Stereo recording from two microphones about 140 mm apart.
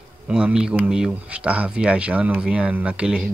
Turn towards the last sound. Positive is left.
turn(degrees=-5)  # may be behind; listen again after turning